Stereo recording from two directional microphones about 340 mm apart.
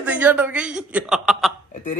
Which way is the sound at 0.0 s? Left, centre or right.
Centre.